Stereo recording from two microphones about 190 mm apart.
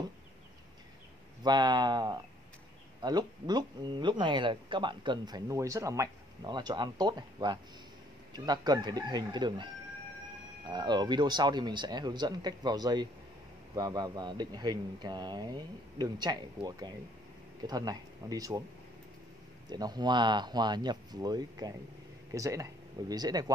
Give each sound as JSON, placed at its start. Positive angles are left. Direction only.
{"t": 1.4, "sound": "speech", "side_deg": -20}
{"t": 10.7, "sound": "speech", "side_deg": -20}
{"t": 19.7, "sound": "speech", "side_deg": -20}